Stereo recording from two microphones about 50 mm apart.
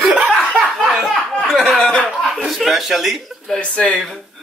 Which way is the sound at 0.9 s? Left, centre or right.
Centre.